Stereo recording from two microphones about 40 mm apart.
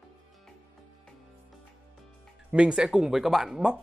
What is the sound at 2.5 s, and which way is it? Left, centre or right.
Speech, right.